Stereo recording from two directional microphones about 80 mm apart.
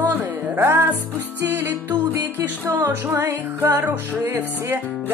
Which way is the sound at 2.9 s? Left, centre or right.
Right.